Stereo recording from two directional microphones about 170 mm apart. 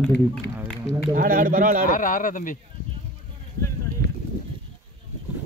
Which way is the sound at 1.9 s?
50° left (ahead or behind).